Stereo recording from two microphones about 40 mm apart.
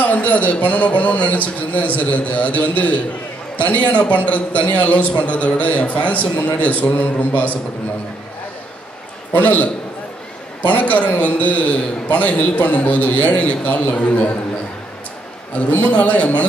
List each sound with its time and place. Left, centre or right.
0.0 s a man's voice: left
9.3 s a man's voice: left
15.9 s a man's voice: left